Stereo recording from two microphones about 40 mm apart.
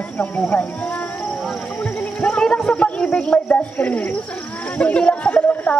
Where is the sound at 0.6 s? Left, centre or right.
Left.